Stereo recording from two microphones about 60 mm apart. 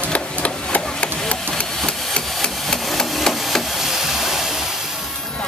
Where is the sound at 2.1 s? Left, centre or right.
Centre.